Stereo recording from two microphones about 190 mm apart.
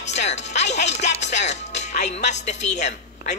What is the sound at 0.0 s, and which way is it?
Music, 35° left (ahead or behind).